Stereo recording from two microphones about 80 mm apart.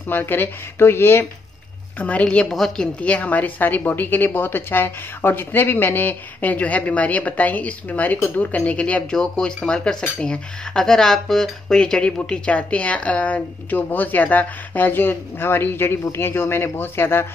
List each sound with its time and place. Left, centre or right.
0.1 s speech: left
2.0 s speech: centre
2.5 s a woman's voice: centre
3.0 s speech: centre